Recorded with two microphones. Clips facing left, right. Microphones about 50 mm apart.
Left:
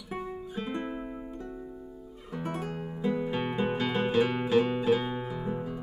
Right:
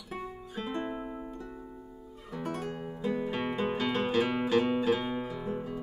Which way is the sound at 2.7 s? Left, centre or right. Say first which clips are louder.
Left 2 dB; centre.